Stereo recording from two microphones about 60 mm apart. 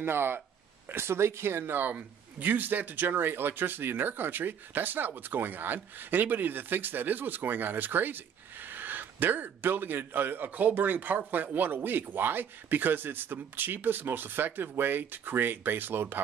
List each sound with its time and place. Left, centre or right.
0.0 s a man's voice: right